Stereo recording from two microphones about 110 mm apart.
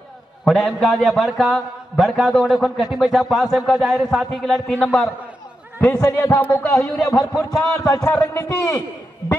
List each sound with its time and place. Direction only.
0.5 s a man's voice: centre (ahead or behind)
5.9 s a man's voice: 25° left (ahead or behind)